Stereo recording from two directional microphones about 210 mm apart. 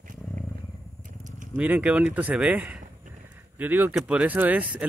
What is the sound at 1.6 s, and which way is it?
Speech, 5° right (ahead or behind).